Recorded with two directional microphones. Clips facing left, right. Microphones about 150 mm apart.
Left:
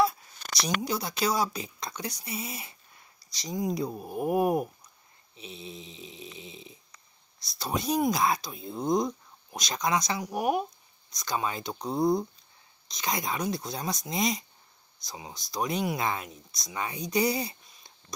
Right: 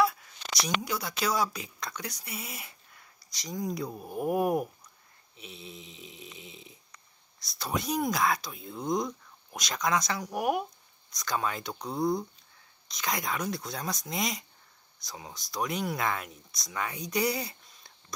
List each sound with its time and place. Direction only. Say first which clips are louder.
0.8 s speech: left 2 dB; 30° left (ahead or behind)